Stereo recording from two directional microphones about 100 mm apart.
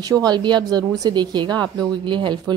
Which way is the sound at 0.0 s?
40° right (ahead or behind).